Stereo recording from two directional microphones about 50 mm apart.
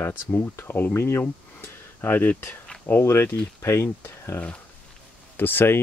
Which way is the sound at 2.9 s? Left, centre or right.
Left.